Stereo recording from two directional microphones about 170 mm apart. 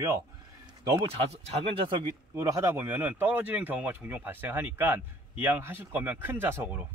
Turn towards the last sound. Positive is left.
turn(degrees=-15)  # may be behind; listen again after turning